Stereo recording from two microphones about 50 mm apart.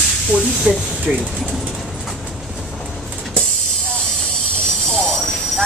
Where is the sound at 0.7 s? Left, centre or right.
Left.